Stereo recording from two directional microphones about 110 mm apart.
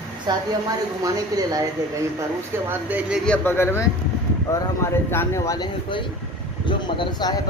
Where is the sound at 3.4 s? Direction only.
20° left (ahead or behind).